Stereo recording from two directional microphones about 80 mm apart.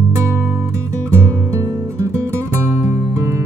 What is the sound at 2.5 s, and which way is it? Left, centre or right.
Music, right.